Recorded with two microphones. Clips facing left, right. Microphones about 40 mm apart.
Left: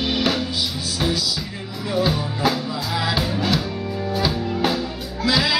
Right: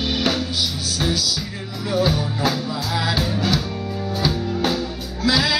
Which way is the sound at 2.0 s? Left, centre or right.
Centre.